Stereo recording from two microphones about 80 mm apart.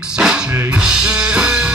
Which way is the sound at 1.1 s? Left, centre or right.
Centre.